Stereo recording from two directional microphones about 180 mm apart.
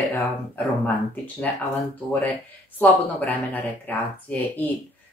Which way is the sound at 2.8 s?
10° left (ahead or behind).